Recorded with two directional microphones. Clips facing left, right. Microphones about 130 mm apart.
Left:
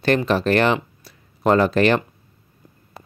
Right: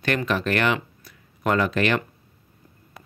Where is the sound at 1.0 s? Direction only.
30° left (ahead or behind).